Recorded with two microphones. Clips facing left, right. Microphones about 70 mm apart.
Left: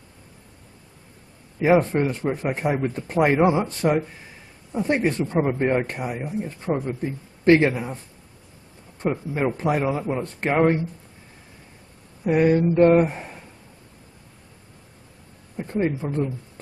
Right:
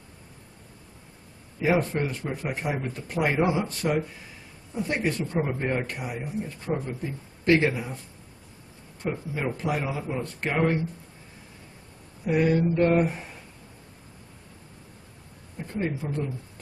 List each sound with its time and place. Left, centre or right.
1.6 s speech: left
9.1 s speech: left
12.3 s speech: left
15.5 s a sound: left